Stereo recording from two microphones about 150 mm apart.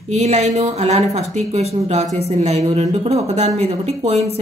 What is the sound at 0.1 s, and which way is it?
Speech, 50° right (ahead or behind).